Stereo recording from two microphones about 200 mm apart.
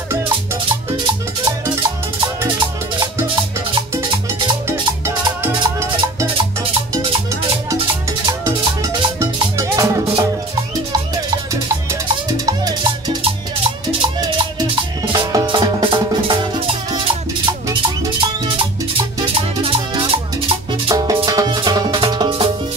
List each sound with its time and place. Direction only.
1.0 s music: 20° right (ahead or behind)
4.6 s music: 15° right (ahead or behind)
5.9 s music: 25° right (ahead or behind)
8.3 s music: 15° right (ahead or behind)
11.9 s music: 15° right (ahead or behind)
19.1 s music: 30° right (ahead or behind)